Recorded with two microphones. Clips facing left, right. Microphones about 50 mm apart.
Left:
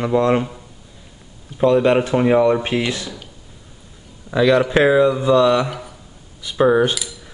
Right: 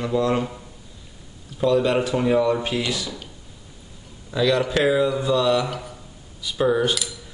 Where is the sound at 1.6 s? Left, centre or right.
Left.